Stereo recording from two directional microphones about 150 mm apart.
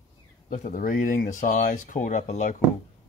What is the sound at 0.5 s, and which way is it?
Speech, 60° left (ahead or behind).